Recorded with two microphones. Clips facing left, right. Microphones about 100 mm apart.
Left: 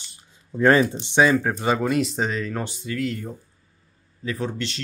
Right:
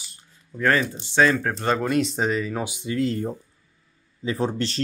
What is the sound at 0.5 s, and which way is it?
Speech, 20° left (ahead or behind).